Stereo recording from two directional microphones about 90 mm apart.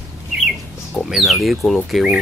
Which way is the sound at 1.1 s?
Centre (ahead or behind).